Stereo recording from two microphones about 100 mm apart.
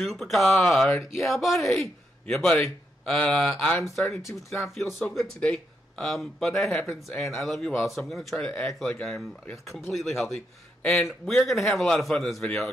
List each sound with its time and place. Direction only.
0.0 s speech: centre (ahead or behind)
4.2 s speech: 30° left (ahead or behind)
4.7 s speech: centre (ahead or behind)